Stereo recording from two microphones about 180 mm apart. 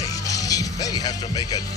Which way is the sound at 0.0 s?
20° left (ahead or behind).